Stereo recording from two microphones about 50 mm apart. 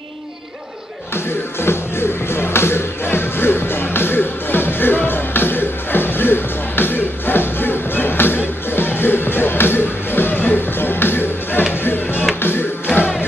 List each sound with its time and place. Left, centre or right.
1.1 s music: left